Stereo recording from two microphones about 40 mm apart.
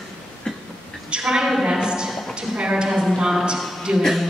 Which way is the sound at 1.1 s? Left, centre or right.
Centre.